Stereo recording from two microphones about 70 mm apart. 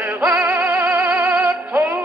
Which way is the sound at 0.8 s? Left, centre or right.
Right.